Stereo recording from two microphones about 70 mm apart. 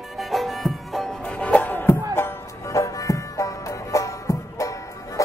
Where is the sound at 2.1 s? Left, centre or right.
Left.